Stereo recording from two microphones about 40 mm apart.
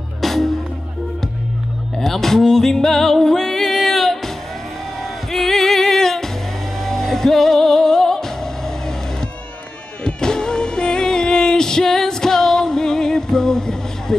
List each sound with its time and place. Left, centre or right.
0.2 s music: centre
2.0 s music: centre
5.3 s music: centre